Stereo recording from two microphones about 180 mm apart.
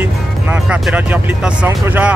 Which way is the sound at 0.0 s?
5° right (ahead or behind).